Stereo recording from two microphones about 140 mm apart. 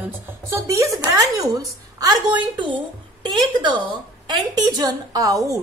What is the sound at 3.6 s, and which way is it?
A woman's voice, 35° right (ahead or behind).